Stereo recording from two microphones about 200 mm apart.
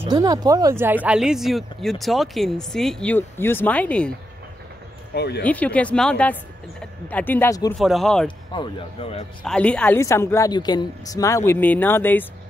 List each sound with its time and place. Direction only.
0.0 s speech: 20° right (ahead or behind); by 4.1 s 5° left (ahead or behind)
5.1 s speech: 55° left (ahead or behind)
5.4 s a woman's voice: 5° left (ahead or behind)
7.8 s speech: centre (ahead or behind)
8.5 s speech: 25° left (ahead or behind)
9.4 s a woman's voice: 5° left (ahead or behind)